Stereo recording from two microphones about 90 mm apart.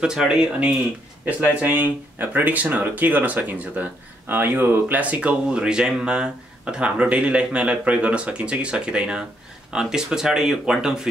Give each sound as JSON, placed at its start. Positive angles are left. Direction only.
{"t": 0.0, "sound": "speech", "side_deg": -5}
{"t": 1.6, "sound": "speech", "side_deg": -20}